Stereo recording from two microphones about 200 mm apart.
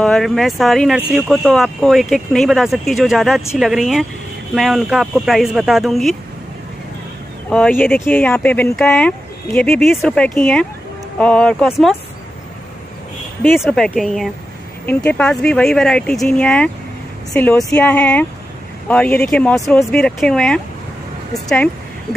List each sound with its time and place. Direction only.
0.0 s speech: 5° left (ahead or behind)
7.4 s speech: 5° left (ahead or behind)
13.6 s speech: 5° left (ahead or behind)